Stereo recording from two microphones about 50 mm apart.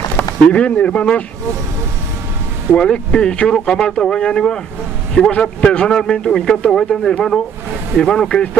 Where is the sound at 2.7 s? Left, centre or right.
Centre.